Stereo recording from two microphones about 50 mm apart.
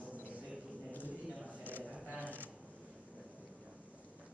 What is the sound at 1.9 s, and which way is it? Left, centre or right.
Mechanisms, right.